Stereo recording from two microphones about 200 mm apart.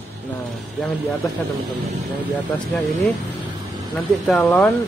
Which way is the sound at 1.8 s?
10° right (ahead or behind).